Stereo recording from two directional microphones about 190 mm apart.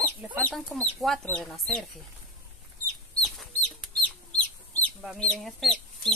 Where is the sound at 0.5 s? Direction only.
5° left (ahead or behind).